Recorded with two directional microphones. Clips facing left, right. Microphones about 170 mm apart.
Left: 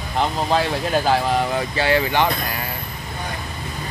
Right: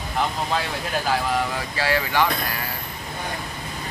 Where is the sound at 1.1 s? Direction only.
25° left (ahead or behind).